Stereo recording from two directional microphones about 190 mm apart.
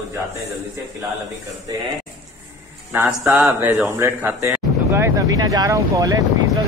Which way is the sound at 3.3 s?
10° right (ahead or behind).